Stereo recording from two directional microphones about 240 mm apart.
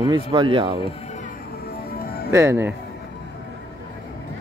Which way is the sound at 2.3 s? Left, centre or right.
Centre.